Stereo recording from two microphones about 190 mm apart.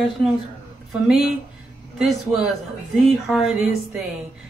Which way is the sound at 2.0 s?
Centre (ahead or behind).